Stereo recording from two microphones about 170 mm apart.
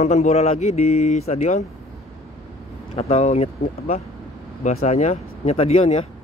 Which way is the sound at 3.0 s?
40° left (ahead or behind).